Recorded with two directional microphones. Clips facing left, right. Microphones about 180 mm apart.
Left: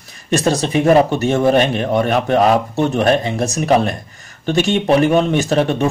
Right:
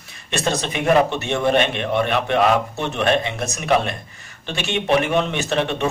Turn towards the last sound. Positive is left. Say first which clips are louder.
# left 6 dB
turn(degrees=40)  # may be behind; listen again after turning